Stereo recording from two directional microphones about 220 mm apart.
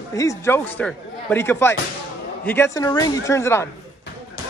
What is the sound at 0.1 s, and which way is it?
Speech, 15° left (ahead or behind).